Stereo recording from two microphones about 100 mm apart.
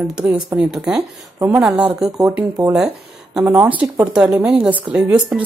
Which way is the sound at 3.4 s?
15° right (ahead or behind).